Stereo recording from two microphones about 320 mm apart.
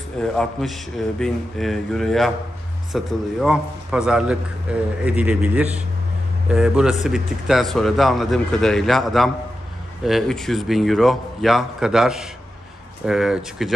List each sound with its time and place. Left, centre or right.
0.2 s a man's voice: centre